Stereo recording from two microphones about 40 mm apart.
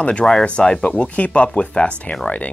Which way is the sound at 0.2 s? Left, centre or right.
Centre.